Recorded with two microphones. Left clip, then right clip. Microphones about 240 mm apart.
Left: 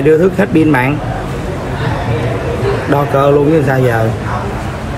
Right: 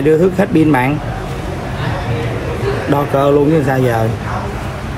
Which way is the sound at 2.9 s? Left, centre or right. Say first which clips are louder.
Left 2 dB; right.